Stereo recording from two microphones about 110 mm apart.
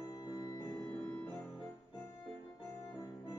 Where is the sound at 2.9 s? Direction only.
35° left (ahead or behind).